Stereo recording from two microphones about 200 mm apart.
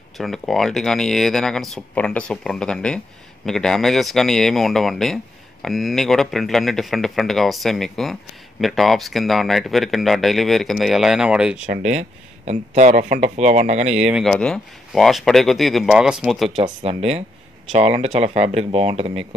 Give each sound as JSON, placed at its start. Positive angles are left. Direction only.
{"t": 0.2, "sound": "speech", "side_deg": 0}
{"t": 11.7, "sound": "speech", "side_deg": -35}
{"t": 14.1, "sound": "speech", "side_deg": 0}
{"t": 16.5, "sound": "speech", "side_deg": -30}